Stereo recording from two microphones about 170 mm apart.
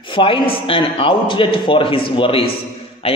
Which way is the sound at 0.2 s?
30° left (ahead or behind).